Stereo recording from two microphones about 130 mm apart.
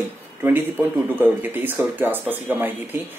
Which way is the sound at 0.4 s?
15° right (ahead or behind).